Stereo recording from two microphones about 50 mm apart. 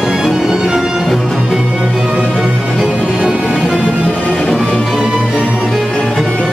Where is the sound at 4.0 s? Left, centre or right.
Left.